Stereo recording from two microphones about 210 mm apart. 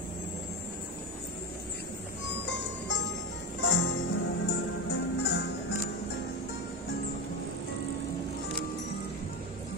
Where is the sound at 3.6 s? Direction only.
65° left (ahead or behind).